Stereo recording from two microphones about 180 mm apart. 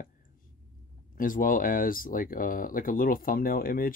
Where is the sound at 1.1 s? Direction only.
50° left (ahead or behind).